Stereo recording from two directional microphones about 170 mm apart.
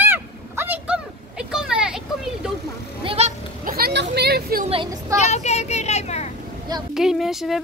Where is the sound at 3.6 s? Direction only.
65° right (ahead or behind).